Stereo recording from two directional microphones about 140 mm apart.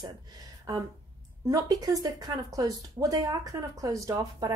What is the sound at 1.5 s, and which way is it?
A woman's voice, 25° right (ahead or behind).